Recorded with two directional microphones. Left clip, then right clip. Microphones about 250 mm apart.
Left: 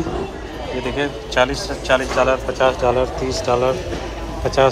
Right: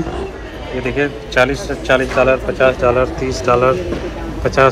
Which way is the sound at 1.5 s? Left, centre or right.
Centre.